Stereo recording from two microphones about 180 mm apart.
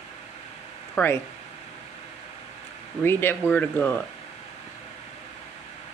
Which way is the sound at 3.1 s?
10° left (ahead or behind).